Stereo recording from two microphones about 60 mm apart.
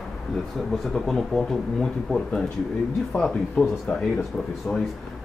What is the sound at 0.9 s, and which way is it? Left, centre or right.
Speech, centre.